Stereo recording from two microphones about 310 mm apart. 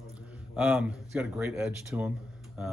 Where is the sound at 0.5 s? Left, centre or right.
Centre.